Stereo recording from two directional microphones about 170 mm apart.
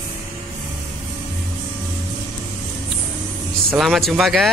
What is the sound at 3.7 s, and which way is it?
Speech, centre (ahead or behind).